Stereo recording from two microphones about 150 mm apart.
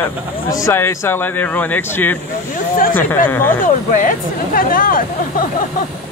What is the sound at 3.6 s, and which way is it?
Speech, 60° left (ahead or behind).